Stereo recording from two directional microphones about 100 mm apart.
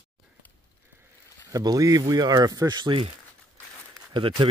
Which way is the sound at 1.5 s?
40° right (ahead or behind).